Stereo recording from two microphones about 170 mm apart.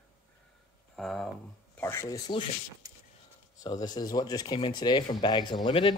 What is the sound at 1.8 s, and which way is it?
Speech, 15° left (ahead or behind).